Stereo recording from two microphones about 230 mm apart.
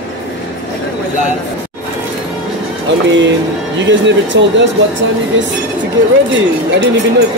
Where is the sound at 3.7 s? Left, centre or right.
Right.